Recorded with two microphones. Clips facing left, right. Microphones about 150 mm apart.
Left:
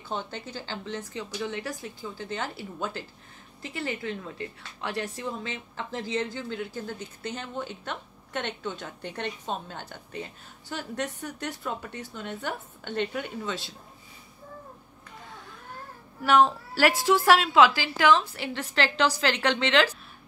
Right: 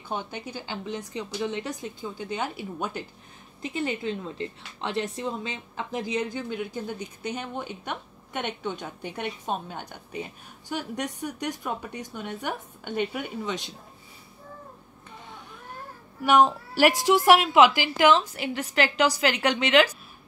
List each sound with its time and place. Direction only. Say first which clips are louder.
0.1 s a woman's voice: right 1 dB; 15° right (ahead or behind)
16.3 s a woman's voice: right 1 dB; 15° right (ahead or behind)